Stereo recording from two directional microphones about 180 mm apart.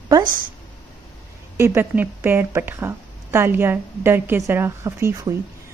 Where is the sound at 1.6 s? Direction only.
10° right (ahead or behind).